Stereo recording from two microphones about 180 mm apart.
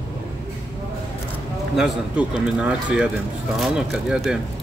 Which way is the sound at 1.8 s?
5° right (ahead or behind).